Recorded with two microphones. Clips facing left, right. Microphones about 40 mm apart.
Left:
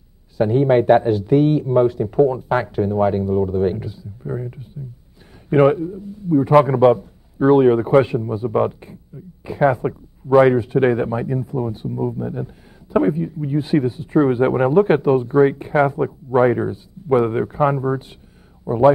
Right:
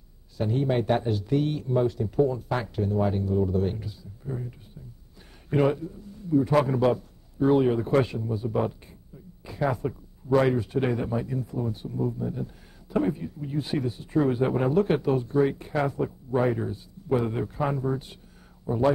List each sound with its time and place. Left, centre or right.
0.4 s a man's voice: left
5.8 s a man's voice: left